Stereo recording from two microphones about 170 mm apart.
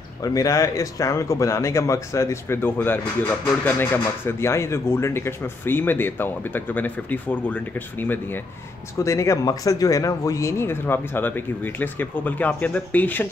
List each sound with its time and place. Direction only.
0.2 s speech: 20° left (ahead or behind)